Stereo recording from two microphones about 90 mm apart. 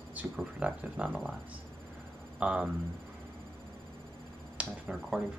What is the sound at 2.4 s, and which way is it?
Speech, 15° right (ahead or behind).